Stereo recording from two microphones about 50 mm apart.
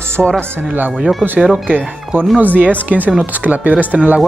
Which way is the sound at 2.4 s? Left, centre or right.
Right.